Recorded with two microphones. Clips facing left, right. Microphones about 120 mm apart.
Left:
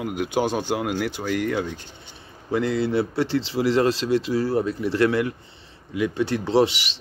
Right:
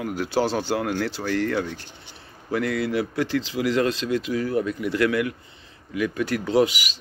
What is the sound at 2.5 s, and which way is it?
A man's voice, 25° left (ahead or behind).